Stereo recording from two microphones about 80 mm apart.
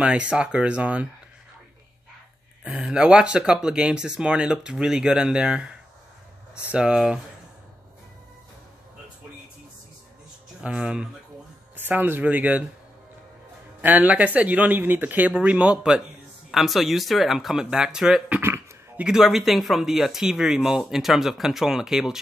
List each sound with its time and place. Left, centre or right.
0.0 s speech: centre
2.6 s speech: centre
10.6 s speech: centre
11.7 s speech: right
13.7 s speech: centre